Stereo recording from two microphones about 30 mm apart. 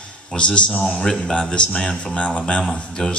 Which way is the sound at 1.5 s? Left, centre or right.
Left.